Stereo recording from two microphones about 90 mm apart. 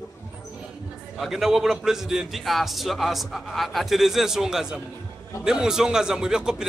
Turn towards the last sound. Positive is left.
turn(degrees=-5)  # may be behind; listen again after turning